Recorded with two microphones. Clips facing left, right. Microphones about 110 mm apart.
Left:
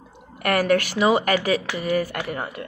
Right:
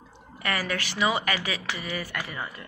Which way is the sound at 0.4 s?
55° left (ahead or behind).